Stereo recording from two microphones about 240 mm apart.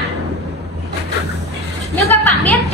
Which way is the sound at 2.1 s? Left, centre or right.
Centre.